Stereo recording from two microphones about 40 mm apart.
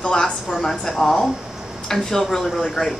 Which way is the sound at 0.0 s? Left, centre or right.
Centre.